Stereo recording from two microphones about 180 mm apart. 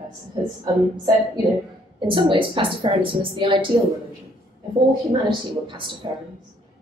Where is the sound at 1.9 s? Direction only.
25° right (ahead or behind).